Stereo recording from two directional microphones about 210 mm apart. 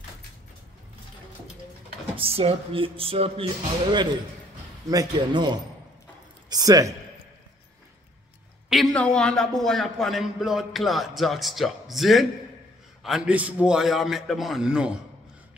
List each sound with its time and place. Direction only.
2.1 s speech: 25° right (ahead or behind)
4.8 s speech: 20° right (ahead or behind)
6.5 s a man's voice: 15° right (ahead or behind)
8.6 s a man's voice: centre (ahead or behind)